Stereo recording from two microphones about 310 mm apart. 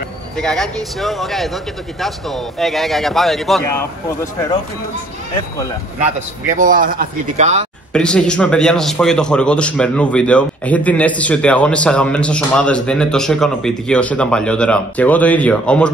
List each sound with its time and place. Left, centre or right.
0.4 s a man's voice: centre
6.5 s speech: right
7.9 s a man's voice: centre